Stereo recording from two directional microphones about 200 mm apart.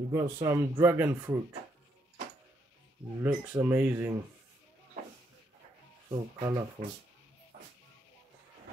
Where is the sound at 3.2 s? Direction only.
15° right (ahead or behind).